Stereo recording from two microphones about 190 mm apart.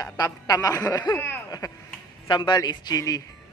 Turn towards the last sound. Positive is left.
turn(degrees=20)  # may be behind; listen again after turning